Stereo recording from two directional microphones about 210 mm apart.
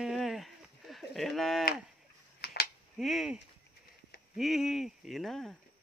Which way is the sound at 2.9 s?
Centre (ahead or behind).